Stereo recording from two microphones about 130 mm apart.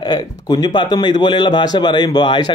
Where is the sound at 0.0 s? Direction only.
30° left (ahead or behind).